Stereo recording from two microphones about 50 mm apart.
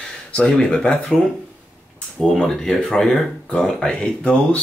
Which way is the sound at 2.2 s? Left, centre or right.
Centre.